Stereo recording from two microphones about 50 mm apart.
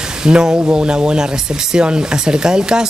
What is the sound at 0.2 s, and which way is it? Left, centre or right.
Speech, centre.